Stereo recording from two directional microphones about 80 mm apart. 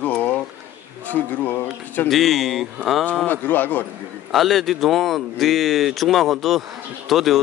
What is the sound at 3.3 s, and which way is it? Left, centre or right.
Speech, left.